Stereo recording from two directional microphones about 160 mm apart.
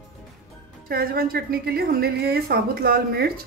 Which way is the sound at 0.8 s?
70° right (ahead or behind).